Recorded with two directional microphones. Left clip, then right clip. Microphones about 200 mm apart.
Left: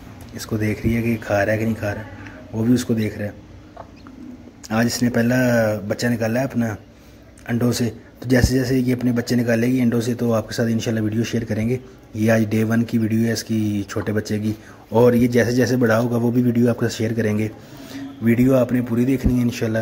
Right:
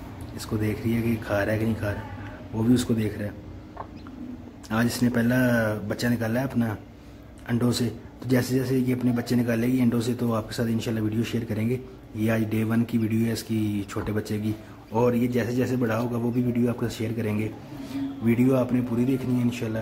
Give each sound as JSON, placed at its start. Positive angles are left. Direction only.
{"t": 0.5, "sound": "speech", "side_deg": 20}
{"t": 4.6, "sound": "speech", "side_deg": 15}